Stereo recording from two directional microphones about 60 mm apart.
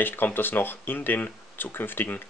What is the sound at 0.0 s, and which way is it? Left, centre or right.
Speech, left.